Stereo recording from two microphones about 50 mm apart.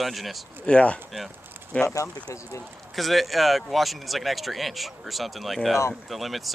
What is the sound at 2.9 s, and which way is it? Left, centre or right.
Speech, centre.